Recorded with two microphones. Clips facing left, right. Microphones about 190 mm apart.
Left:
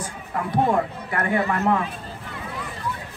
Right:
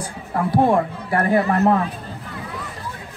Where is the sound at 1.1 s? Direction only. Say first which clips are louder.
Right 5 dB; 35° right (ahead or behind).